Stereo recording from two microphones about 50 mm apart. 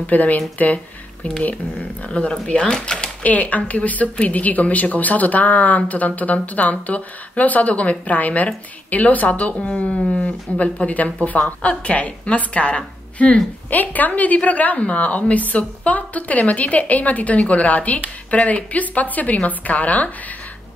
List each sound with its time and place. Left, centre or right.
0.0 s a woman's voice: left; by 3.1 s centre
3.2 s a woman's voice: left
11.4 s speech: centre
11.8 s a woman's voice: left